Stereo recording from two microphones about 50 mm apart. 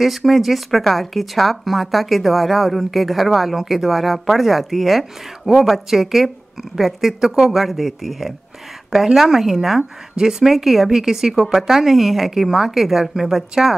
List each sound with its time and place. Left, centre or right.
0.0 s speech: centre